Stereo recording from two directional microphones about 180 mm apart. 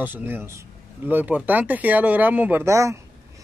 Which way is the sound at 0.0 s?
10° right (ahead or behind).